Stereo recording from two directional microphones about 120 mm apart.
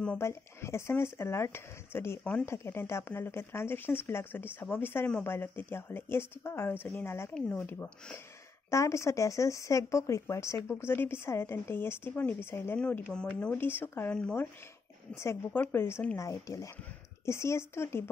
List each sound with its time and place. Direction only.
0.2 s speech: 25° left (ahead or behind)
14.1 s speech: 10° left (ahead or behind)
15.1 s speech: 25° left (ahead or behind)
16.2 s speech: 25° left (ahead or behind)